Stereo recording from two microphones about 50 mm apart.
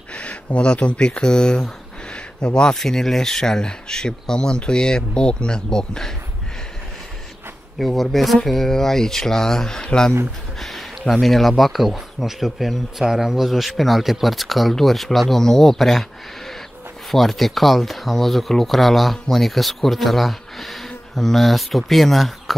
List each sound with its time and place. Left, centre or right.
0.1 s speech: left
7.8 s speech: centre
10.6 s speech: centre
17.1 s speech: centre